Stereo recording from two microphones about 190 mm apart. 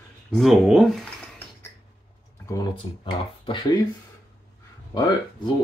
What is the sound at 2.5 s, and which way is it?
Speech, 25° left (ahead or behind).